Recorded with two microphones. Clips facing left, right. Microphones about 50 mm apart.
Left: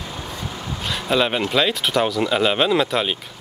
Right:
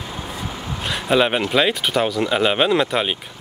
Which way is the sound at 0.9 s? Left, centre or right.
Centre.